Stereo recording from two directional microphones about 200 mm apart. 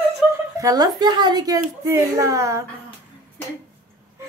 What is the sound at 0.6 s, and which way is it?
A woman's voice, 20° right (ahead or behind).